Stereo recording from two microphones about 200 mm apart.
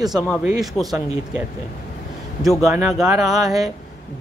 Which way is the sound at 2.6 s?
5° right (ahead or behind).